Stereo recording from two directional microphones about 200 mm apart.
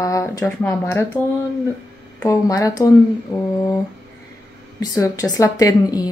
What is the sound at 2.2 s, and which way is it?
Speech, 15° left (ahead or behind).